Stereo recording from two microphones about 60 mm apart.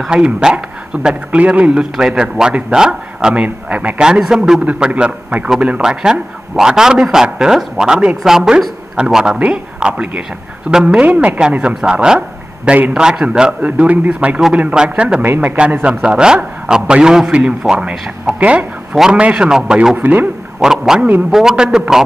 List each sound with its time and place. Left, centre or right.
0.1 s a man's voice: centre
5.9 s a man's voice: centre
11.0 s a man's voice: right
11.7 s a man's voice: centre
12.6 s a man's voice: right
12.9 s a man's voice: centre
15.2 s a man's voice: right
15.8 s a man's voice: centre
18.9 s a man's voice: centre
20.0 s a man's voice: right
20.6 s a man's voice: centre